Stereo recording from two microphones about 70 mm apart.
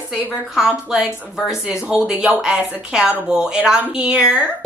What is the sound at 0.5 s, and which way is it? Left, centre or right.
Speech, centre.